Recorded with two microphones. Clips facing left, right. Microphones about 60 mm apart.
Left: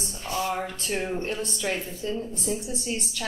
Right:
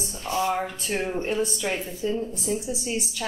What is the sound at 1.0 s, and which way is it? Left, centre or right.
Speech, centre.